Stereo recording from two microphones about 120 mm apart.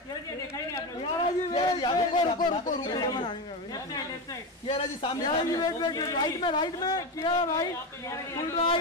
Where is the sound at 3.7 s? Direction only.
30° left (ahead or behind).